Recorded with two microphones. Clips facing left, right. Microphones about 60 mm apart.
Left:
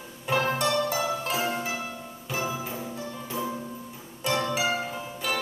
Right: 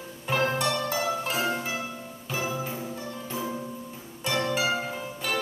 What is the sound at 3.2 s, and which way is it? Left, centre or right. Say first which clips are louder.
Music: left 1 dB; centre.